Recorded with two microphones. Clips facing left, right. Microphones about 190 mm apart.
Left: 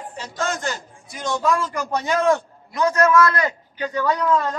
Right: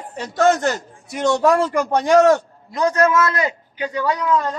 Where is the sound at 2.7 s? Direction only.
30° right (ahead or behind); by 4.6 s 10° right (ahead or behind).